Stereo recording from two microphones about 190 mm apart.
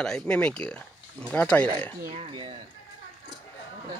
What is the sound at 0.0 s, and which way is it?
Speech, 5° left (ahead or behind).